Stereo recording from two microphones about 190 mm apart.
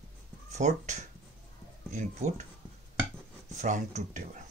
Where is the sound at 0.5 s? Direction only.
35° right (ahead or behind).